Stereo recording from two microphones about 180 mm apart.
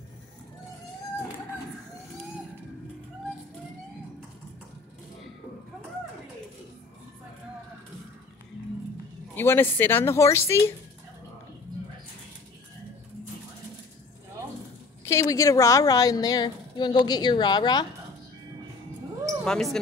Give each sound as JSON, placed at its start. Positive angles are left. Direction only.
{"t": 9.3, "sound": "speech", "side_deg": 10}
{"t": 15.0, "sound": "a woman's voice", "side_deg": 15}
{"t": 19.2, "sound": "basketball bounce", "side_deg": 0}